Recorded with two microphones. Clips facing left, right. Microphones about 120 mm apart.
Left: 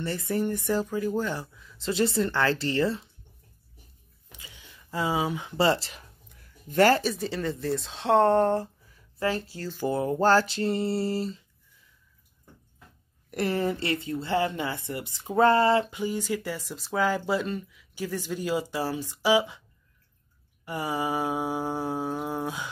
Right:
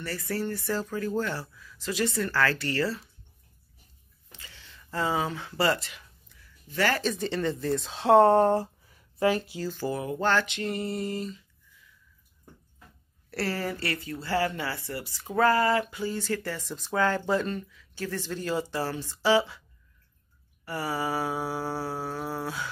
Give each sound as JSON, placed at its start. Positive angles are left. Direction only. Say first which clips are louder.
{"t": 0.0, "sound": "speech", "louder": "left 4 dB", "side_deg": 25}
{"t": 4.3, "sound": "speech", "louder": "left 1 dB", "side_deg": 15}
{"t": 6.2, "sound": "a sound", "louder": "left 7 dB", "side_deg": 50}
{"t": 7.0, "sound": "speech", "louder": "right 1 dB", "side_deg": 5}
{"t": 9.8, "sound": "speech", "louder": "left 5 dB", "side_deg": 25}
{"t": 10.0, "sound": "a sound", "louder": "left 5 dB", "side_deg": 35}
{"t": 13.3, "sound": "speech", "louder": "left 4 dB", "side_deg": 20}
{"t": 20.6, "sound": "speech", "louder": "left 1 dB", "side_deg": 15}